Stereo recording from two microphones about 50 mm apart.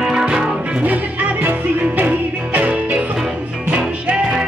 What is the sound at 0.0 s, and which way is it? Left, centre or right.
Music, centre.